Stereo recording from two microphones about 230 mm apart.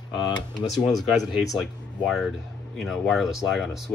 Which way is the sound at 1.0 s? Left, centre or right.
Centre.